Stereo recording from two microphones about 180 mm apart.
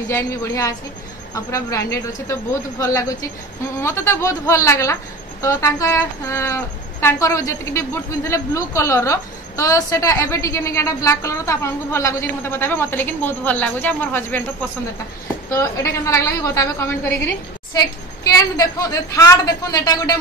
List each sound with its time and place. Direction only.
0.1 s a woman's voice: 15° left (ahead or behind)
15.5 s a woman's voice: 15° left (ahead or behind)